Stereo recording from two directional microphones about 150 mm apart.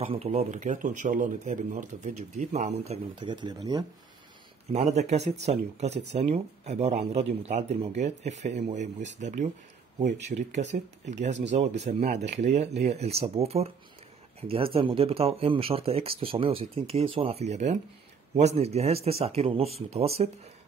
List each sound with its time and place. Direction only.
0.0 s speech: 45° right (ahead or behind)
4.7 s speech: 45° right (ahead or behind)